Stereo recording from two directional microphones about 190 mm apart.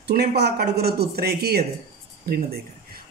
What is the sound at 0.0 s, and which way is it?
Speech, 55° right (ahead or behind).